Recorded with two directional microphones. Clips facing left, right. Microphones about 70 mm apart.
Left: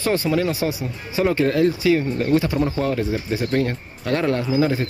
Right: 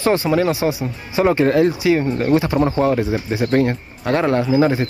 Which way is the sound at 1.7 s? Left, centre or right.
Centre.